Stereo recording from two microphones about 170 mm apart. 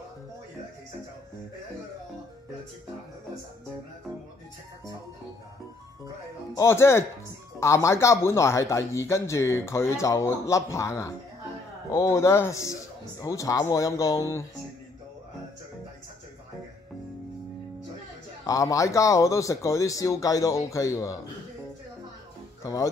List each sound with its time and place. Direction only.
6.5 s speech: 15° left (ahead or behind)
18.4 s speech: 20° left (ahead or behind)
22.6 s speech: 20° left (ahead or behind)